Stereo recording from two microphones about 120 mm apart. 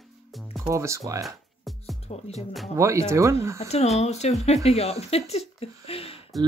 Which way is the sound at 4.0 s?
65° left (ahead or behind).